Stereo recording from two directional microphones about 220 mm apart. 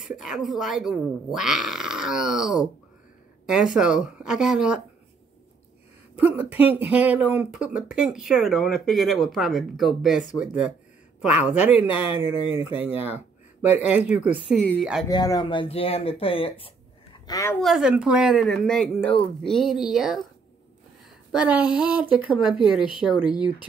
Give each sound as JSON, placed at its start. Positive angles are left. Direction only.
{"t": 0.0, "sound": "speech", "side_deg": 0}
{"t": 6.1, "sound": "speech", "side_deg": -10}
{"t": 15.0, "sound": "speech", "side_deg": 15}
{"t": 17.6, "sound": "speech", "side_deg": 0}
{"t": 21.3, "sound": "speech", "side_deg": -5}